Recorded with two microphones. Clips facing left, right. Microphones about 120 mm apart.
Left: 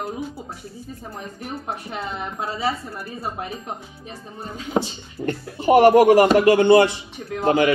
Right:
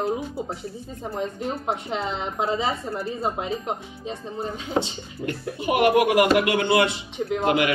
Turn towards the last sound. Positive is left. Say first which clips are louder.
# left 4 dB
turn(degrees=30)  # may be behind; listen again after turning